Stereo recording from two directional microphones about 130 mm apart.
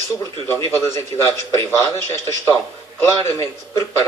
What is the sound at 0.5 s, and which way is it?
Speech, 20° left (ahead or behind).